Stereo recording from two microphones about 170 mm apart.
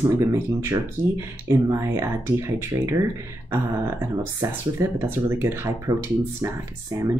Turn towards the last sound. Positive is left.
turn(degrees=-20)  # may be behind; listen again after turning